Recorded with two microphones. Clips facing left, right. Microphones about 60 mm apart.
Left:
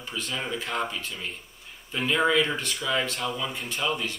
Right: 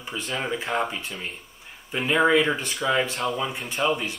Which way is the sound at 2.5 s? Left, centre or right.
Centre.